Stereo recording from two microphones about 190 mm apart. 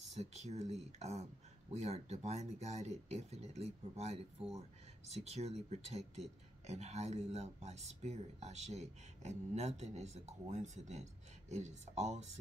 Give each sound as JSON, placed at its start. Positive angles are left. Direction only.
{"t": 0.1, "sound": "speech", "side_deg": -35}